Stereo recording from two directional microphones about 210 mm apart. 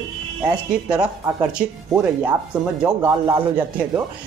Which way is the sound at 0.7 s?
5° right (ahead or behind).